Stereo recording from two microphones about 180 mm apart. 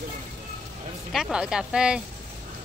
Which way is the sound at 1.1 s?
Centre (ahead or behind).